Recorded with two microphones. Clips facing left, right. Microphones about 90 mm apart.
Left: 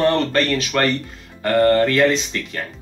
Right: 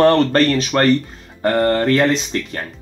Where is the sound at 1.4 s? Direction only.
30° right (ahead or behind).